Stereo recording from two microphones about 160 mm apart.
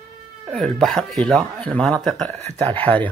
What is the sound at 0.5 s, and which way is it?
Speech, 5° left (ahead or behind).